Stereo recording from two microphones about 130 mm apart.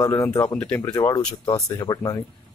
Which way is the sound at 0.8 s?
30° left (ahead or behind).